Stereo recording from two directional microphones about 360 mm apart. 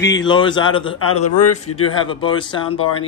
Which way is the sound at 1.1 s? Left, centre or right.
Left.